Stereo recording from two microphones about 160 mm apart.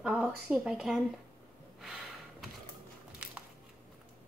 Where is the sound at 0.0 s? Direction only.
Centre (ahead or behind).